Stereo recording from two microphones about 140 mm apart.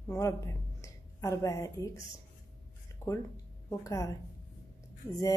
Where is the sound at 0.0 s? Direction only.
20° left (ahead or behind).